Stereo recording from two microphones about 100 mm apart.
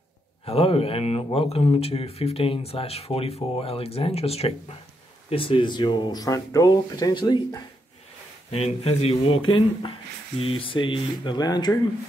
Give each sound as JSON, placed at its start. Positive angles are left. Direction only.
{"t": 0.5, "sound": "speech", "side_deg": 75}
{"t": 5.3, "sound": "speech", "side_deg": 60}
{"t": 8.5, "sound": "speech", "side_deg": 90}